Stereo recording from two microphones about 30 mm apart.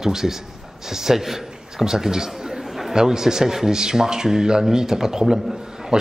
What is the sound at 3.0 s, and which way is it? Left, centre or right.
A man's voice, centre.